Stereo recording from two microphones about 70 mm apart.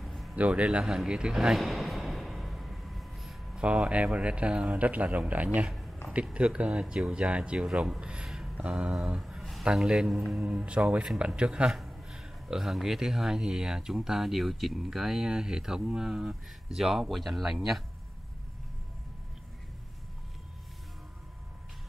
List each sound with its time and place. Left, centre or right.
0.0 s a sound: centre
0.4 s music: centre
3.5 s speech: centre
8.5 s a sound: centre
9.8 s speech: centre
10.4 s speech: centre